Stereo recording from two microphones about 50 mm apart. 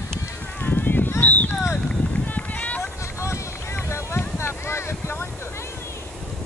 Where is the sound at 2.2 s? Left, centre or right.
Left.